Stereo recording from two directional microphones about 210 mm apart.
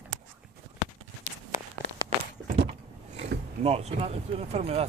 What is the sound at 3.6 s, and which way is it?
Speech, 30° right (ahead or behind).